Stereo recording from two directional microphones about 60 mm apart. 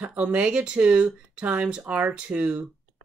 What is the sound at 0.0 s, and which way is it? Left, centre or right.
Speech, right.